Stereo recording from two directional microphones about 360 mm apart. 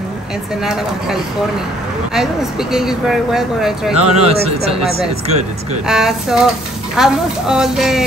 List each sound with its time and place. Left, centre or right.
0.7 s speech: centre
2.7 s speech: centre
3.9 s speech: centre
5.9 s speech: centre